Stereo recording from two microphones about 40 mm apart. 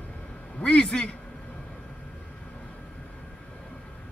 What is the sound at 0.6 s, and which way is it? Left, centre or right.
Speech, left.